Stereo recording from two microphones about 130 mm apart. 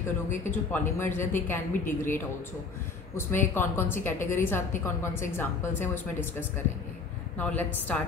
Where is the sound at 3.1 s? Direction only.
15° left (ahead or behind).